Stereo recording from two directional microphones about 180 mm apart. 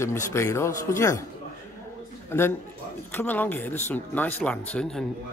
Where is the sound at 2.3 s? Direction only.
10° left (ahead or behind).